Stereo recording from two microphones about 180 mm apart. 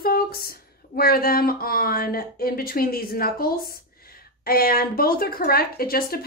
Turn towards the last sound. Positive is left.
turn(degrees=55)  # may be behind; listen again after turning